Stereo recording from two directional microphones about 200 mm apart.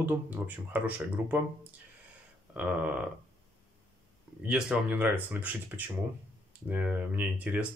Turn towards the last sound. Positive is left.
turn(degrees=-5)  # may be behind; listen again after turning